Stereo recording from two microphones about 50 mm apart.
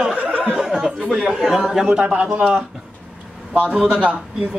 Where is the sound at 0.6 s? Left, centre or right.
Centre.